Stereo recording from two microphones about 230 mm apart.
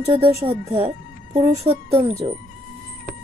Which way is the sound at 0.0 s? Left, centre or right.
Right.